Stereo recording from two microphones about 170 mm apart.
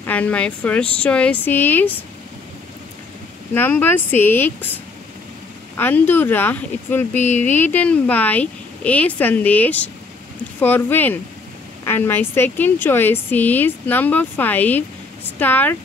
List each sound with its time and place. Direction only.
0.0 s speech: 10° left (ahead or behind)
3.5 s speech: 10° left (ahead or behind)
5.8 s speech: 10° left (ahead or behind)